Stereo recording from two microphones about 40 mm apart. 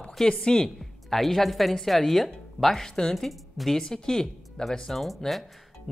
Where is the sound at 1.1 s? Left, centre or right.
Centre.